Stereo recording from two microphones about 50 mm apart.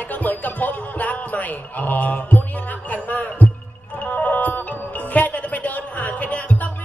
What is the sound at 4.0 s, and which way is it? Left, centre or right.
Music, left.